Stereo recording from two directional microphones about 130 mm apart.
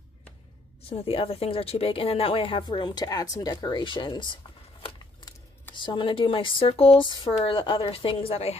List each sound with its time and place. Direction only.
0.8 s speech: 45° left (ahead or behind)